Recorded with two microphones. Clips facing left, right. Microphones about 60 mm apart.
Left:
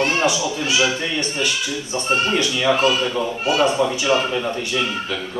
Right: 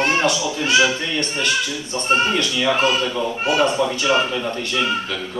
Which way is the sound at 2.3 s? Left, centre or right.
Centre.